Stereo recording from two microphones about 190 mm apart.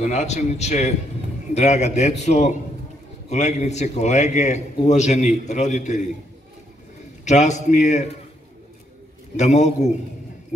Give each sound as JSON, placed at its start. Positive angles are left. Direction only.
{"t": 0.0, "sound": "a man's voice", "side_deg": 35}
{"t": 7.2, "sound": "a man's voice", "side_deg": 40}
{"t": 9.4, "sound": "a man's voice", "side_deg": 40}